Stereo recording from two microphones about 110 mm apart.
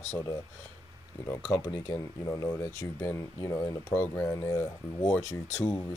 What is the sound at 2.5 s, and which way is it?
Speech, 25° left (ahead or behind).